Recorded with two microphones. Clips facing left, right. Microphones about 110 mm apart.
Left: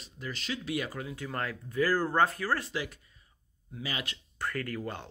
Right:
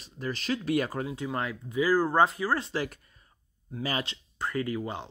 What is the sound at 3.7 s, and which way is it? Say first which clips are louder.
Speech: right 6 dB; 45° right (ahead or behind).